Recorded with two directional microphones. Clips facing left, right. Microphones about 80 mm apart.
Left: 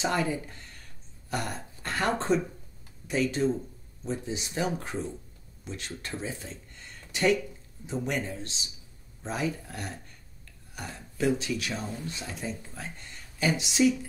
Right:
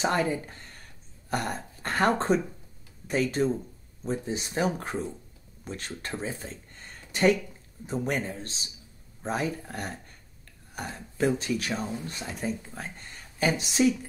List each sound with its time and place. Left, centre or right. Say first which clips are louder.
0.0 s speech: right 2 dB; right
5.7 s speech: right 2 dB; right